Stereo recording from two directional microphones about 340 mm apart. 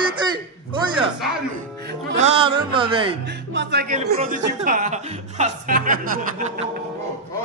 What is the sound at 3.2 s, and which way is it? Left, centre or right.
Speech, right.